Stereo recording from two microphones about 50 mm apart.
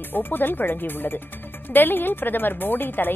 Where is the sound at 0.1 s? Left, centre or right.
Left.